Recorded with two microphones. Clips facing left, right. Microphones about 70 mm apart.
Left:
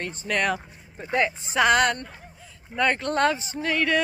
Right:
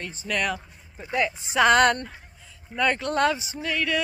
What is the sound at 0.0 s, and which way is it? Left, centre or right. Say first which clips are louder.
Speech: left 3 dB; left.